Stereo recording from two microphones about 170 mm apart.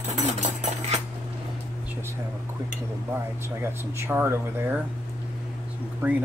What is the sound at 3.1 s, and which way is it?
Speech, 15° right (ahead or behind).